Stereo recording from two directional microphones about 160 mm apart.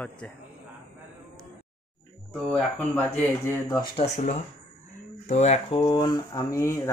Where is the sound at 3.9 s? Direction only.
40° left (ahead or behind).